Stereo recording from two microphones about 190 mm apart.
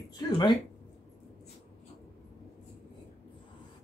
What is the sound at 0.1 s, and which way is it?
Speech, 20° left (ahead or behind).